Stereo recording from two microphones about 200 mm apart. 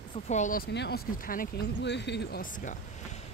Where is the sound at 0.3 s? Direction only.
40° left (ahead or behind).